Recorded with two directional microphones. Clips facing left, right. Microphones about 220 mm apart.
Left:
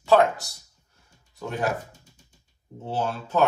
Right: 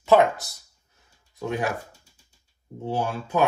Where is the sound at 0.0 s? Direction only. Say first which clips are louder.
Right 1 dB; 20° right (ahead or behind).